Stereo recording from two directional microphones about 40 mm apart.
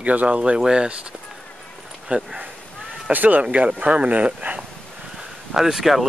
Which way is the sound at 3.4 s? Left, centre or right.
Right.